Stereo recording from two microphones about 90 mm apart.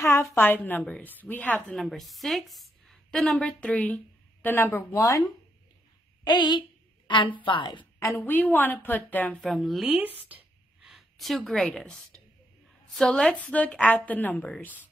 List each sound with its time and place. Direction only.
0.0 s a woman's voice: 30° left (ahead or behind)
1.7 s a woman's voice: 5° left (ahead or behind); by 4.8 s 25° left (ahead or behind)
4.9 s speech: 35° left (ahead or behind)
6.2 s a woman's voice: 55° left (ahead or behind)
8.2 s a woman's voice: 20° left (ahead or behind)
9.4 s speech: centre (ahead or behind)
9.8 s speech: 15° right (ahead or behind)
10.8 s a woman's voice: 5° right (ahead or behind); by 14.9 s 20° left (ahead or behind)